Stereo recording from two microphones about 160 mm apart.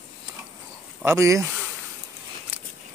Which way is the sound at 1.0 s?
15° right (ahead or behind).